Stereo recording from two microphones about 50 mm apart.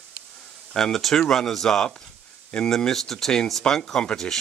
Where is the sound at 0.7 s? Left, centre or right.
Centre.